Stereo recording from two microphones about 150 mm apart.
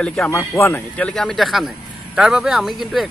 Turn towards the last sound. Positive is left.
turn(degrees=0)  # may be behind; listen again after turning